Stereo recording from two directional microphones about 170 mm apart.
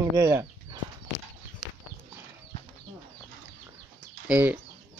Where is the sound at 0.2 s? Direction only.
20° right (ahead or behind).